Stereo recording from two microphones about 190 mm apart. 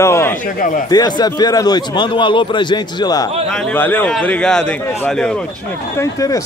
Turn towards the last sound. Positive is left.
turn(degrees=15)  # may be behind; listen again after turning